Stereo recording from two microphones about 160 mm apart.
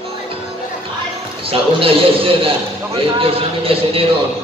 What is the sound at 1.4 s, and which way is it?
A man's voice, 35° right (ahead or behind).